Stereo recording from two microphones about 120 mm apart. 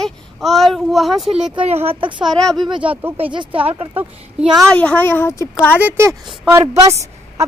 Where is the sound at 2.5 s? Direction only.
40° right (ahead or behind).